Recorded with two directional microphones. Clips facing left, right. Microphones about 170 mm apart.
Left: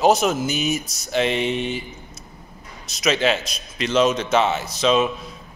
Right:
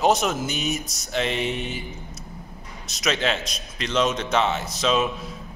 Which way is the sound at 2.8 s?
Centre (ahead or behind).